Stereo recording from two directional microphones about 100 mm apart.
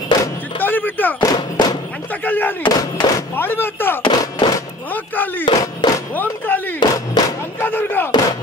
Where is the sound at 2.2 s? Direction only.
20° left (ahead or behind).